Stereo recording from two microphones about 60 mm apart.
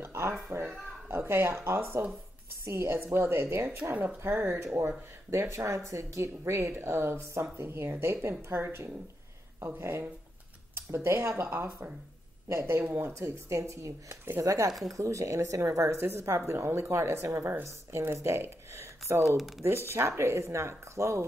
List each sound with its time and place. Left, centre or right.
0.0 s speech: right
13.1 s speech: right
14.4 s speech: right
16.0 s speech: right
17.4 s speech: right
19.2 s speech: centre
19.9 s speech: right